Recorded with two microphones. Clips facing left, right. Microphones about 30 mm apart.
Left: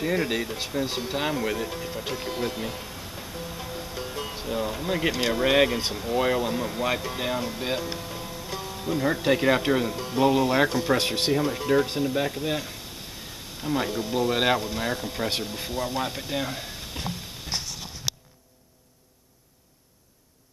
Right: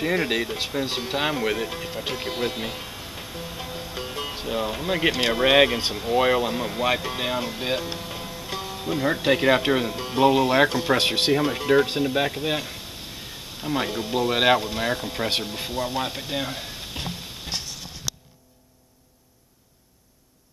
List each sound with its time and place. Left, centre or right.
0.0 s speech: right
11.3 s speech: right
18.1 s music: centre